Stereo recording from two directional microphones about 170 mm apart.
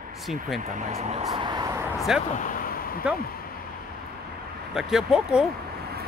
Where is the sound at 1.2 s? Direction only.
25° right (ahead or behind).